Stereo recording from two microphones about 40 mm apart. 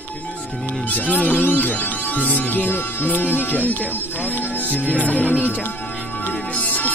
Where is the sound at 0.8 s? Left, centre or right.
Left.